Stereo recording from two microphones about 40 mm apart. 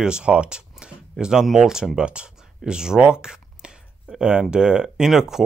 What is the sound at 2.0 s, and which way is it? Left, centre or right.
Speech, right.